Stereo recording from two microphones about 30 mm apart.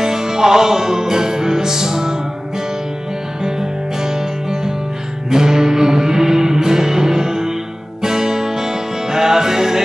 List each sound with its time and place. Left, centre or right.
0.0 s music: centre
3.4 s music: centre